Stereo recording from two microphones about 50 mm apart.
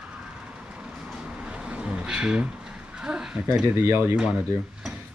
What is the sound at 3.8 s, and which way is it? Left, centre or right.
Speech, right.